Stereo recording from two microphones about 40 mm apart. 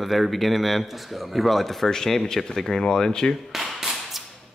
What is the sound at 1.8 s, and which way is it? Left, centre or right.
Speech, centre.